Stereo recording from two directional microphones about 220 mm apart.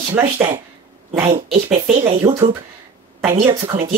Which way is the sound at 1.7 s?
25° right (ahead or behind).